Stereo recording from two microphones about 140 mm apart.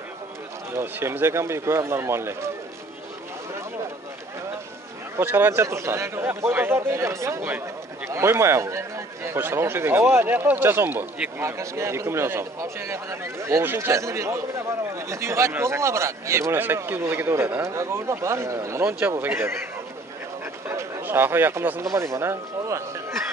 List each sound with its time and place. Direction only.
0.7 s speech: 15° right (ahead or behind)
5.1 s speech: 15° right (ahead or behind)
20.6 s speech: 15° right (ahead or behind)